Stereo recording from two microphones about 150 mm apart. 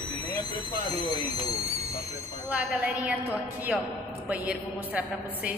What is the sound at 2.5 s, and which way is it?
A woman's voice, 10° right (ahead or behind).